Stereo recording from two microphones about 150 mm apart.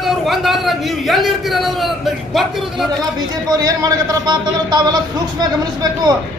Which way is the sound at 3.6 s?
25° right (ahead or behind).